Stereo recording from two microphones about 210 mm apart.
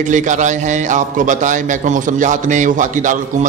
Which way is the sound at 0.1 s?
35° right (ahead or behind).